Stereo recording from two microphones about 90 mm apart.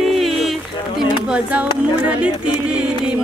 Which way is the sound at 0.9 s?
10° right (ahead or behind).